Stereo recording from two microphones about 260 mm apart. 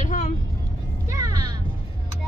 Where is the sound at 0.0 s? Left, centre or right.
Left.